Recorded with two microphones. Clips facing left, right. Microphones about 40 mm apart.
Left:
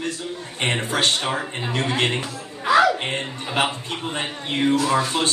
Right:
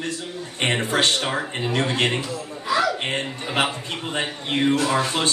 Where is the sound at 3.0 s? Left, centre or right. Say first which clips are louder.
Right 1 dB; right.